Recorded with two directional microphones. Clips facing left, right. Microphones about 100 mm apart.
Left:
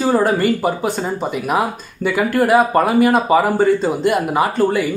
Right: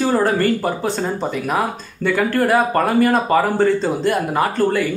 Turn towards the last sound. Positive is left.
turn(degrees=10)  # may be behind; listen again after turning